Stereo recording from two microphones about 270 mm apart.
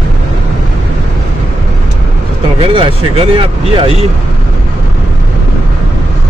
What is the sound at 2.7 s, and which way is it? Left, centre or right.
Speech, centre.